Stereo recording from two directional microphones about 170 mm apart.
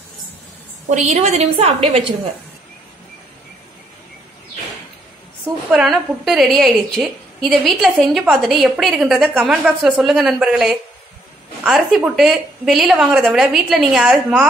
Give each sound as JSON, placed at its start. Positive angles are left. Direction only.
{"t": 0.8, "sound": "a woman's voice", "side_deg": -45}
{"t": 5.7, "sound": "a woman's voice", "side_deg": 0}